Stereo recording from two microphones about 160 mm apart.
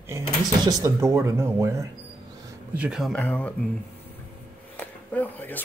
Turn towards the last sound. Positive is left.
turn(degrees=10)  # may be behind; listen again after turning